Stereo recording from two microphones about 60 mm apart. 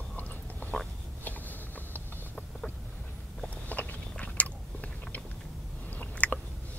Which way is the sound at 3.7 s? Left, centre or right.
Left.